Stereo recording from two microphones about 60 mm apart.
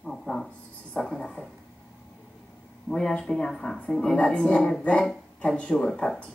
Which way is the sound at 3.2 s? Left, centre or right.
Centre.